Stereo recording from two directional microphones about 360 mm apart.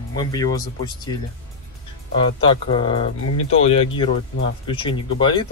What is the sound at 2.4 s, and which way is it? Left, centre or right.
Speech, centre.